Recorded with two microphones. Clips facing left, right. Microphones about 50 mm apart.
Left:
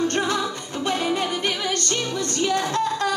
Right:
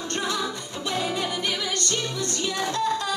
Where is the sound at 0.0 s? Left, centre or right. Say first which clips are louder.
Left 5 dB; left.